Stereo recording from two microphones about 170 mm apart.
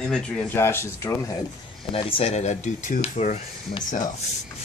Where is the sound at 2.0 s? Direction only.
30° left (ahead or behind); by 3.3 s 45° left (ahead or behind).